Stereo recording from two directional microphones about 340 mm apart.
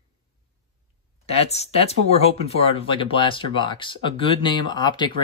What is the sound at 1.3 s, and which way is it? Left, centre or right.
Speech, centre.